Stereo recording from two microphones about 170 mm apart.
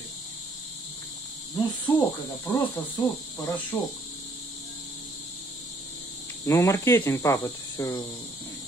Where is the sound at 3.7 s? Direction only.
20° left (ahead or behind).